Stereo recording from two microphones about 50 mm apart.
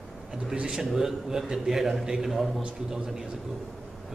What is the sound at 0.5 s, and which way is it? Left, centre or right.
A man's voice, centre.